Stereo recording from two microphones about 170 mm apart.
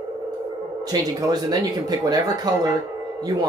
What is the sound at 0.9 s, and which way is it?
Speech, 25° right (ahead or behind).